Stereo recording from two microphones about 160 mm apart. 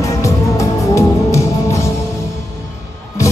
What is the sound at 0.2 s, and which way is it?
Music, 20° left (ahead or behind).